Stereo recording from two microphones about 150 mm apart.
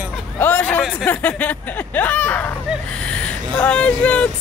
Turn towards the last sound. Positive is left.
turn(degrees=10)  # may be behind; listen again after turning